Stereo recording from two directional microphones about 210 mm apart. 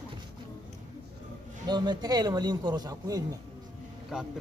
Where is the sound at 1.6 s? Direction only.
20° right (ahead or behind).